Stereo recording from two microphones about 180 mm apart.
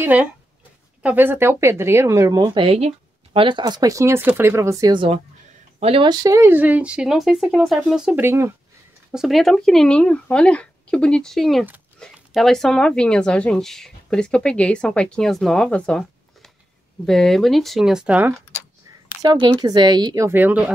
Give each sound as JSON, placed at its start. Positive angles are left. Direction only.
{"t": 0.0, "sound": "speech", "side_deg": -10}
{"t": 5.8, "sound": "speech", "side_deg": -30}
{"t": 6.2, "sound": "speech", "side_deg": -15}
{"t": 9.1, "sound": "speech", "side_deg": 0}
{"t": 19.2, "sound": "speech", "side_deg": -25}